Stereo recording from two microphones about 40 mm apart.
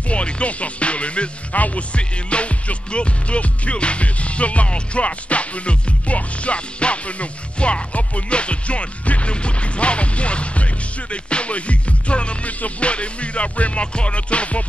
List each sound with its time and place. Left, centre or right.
0.1 s music: left